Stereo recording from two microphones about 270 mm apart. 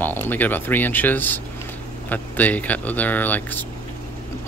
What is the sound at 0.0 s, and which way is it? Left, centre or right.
Speech, centre.